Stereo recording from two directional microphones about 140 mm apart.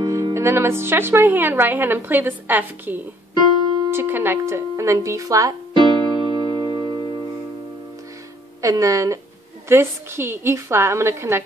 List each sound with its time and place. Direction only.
0.0 s speech: 20° right (ahead or behind)
3.9 s music: 15° right (ahead or behind); by 7.1 s 35° right (ahead or behind)
8.5 s speech: 25° right (ahead or behind)